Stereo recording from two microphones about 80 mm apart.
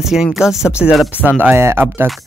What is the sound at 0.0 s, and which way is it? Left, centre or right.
Speech, centre.